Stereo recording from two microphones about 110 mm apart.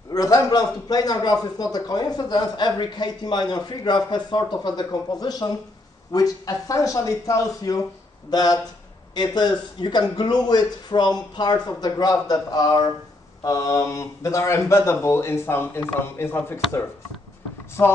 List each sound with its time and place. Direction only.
0.1 s a man's voice: 35° left (ahead or behind)